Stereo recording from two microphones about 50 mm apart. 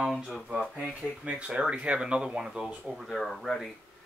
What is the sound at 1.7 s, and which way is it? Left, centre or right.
Speech, right.